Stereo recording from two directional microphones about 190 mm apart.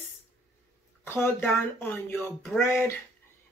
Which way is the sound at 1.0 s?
10° left (ahead or behind).